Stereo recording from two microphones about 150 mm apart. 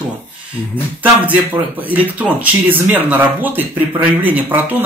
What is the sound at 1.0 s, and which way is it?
Speech, 10° right (ahead or behind).